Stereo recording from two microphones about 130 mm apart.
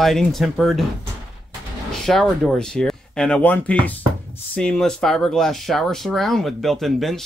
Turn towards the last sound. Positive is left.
turn(degrees=0)  # may be behind; listen again after turning